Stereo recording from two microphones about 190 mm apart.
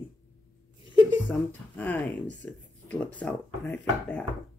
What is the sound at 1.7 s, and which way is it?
A woman's voice, 10° left (ahead or behind).